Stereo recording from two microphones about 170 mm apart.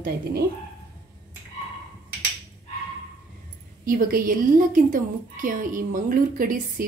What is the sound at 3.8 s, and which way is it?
A woman's voice, 55° right (ahead or behind).